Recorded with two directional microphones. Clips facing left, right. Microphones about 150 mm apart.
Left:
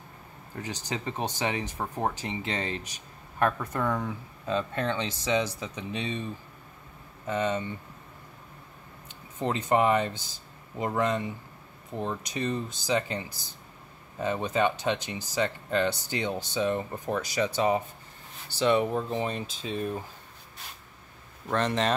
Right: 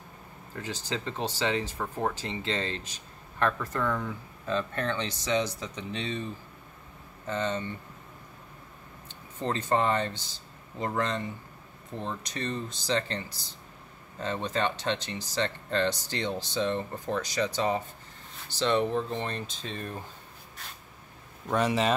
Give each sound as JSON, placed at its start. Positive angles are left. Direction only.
{"t": 0.6, "sound": "speech", "side_deg": 15}
{"t": 7.2, "sound": "speech", "side_deg": 10}
{"t": 9.4, "sound": "speech", "side_deg": 10}
{"t": 14.2, "sound": "speech", "side_deg": 10}
{"t": 21.5, "sound": "speech", "side_deg": -10}